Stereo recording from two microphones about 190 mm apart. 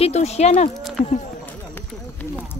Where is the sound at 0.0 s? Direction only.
35° left (ahead or behind).